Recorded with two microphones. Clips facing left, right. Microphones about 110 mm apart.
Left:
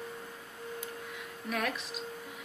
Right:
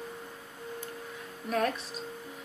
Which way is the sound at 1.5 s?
35° right (ahead or behind).